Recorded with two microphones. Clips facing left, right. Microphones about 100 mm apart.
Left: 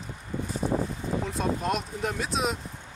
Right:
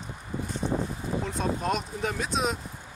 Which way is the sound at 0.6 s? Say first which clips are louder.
Left 2 dB; 5° left (ahead or behind).